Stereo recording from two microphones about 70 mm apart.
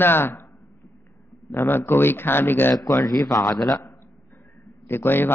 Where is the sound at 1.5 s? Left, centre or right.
Left.